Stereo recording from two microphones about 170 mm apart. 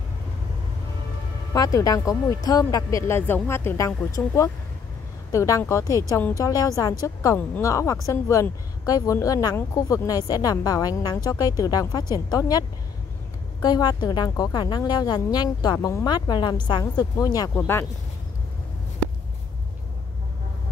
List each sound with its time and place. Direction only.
1.5 s a woman's voice: 20° left (ahead or behind)
5.3 s a woman's voice: 20° left (ahead or behind)